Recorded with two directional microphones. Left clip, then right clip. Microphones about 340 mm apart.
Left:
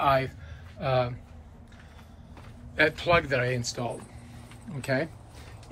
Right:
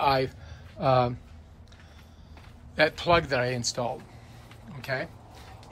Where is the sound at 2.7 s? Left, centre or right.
Centre.